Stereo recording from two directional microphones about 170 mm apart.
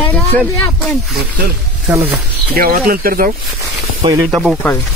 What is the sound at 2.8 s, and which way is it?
Speech, 60° right (ahead or behind).